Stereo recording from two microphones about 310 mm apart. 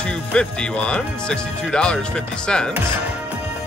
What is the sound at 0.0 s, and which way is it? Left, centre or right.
Speech, centre.